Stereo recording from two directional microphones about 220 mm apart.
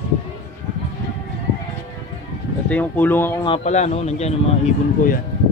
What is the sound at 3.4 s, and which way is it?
Speech, 30° left (ahead or behind).